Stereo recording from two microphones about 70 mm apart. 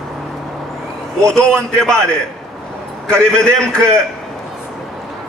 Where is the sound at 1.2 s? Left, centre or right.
Centre.